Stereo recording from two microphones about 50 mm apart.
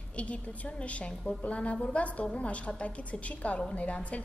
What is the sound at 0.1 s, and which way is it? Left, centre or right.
A woman's voice, left.